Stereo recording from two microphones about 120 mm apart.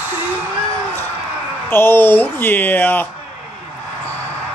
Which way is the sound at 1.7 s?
20° left (ahead or behind).